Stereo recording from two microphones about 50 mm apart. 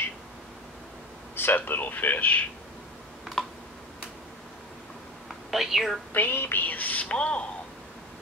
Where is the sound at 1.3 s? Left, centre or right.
Left.